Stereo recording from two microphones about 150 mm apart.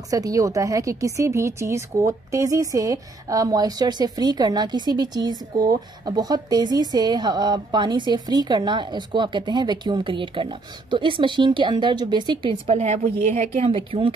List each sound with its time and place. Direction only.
0.1 s a woman's voice: 20° right (ahead or behind)
12.6 s a woman's voice: 50° right (ahead or behind)
13.6 s speech: 35° right (ahead or behind)